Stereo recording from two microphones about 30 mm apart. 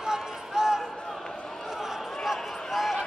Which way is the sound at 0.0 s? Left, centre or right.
Centre.